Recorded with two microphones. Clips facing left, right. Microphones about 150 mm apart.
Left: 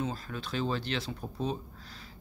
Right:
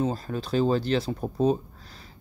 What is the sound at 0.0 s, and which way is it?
Speech, 40° right (ahead or behind).